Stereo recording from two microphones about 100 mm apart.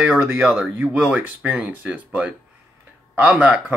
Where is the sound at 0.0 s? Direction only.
15° right (ahead or behind).